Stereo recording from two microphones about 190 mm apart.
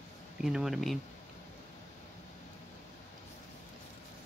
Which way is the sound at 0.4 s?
5° right (ahead or behind).